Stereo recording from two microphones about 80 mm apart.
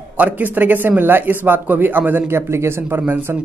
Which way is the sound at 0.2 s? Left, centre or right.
Right.